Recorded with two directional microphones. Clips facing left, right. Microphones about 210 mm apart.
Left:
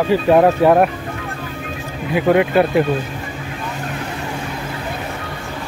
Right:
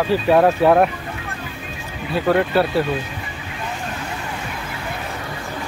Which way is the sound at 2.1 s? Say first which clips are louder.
Left 3 dB; 15° left (ahead or behind).